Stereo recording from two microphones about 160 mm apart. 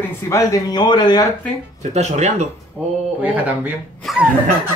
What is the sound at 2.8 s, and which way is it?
Speech, 5° right (ahead or behind).